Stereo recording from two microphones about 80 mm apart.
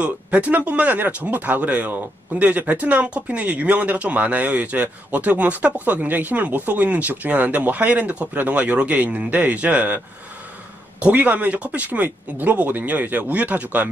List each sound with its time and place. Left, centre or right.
0.0 s speech: centre
11.0 s speech: centre